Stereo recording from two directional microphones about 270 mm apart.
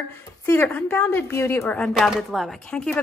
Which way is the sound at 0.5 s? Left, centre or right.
Centre.